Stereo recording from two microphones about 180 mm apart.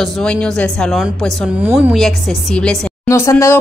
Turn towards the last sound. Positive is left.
turn(degrees=15)  # may be behind; listen again after turning